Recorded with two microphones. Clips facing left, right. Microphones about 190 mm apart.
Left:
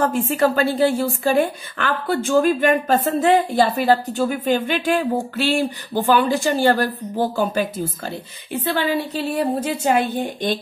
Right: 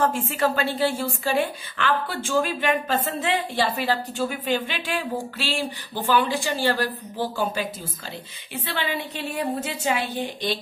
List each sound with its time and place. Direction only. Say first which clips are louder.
0.0 s a woman's voice: left 4 dB; 40° left (ahead or behind)
8.7 s a woman's voice: left 6 dB; 40° left (ahead or behind)